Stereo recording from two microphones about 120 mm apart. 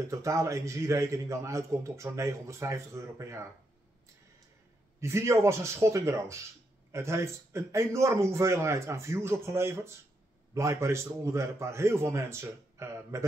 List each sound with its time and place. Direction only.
0.1 s a man's voice: 25° right (ahead or behind)
5.0 s a man's voice: 25° right (ahead or behind)